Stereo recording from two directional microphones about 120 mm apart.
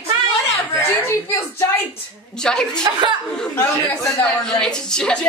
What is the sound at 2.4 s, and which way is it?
Speech, 5° left (ahead or behind).